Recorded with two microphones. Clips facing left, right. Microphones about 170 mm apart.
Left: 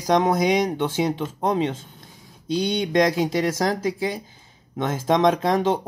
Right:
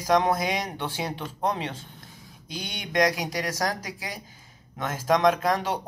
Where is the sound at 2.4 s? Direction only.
25° left (ahead or behind).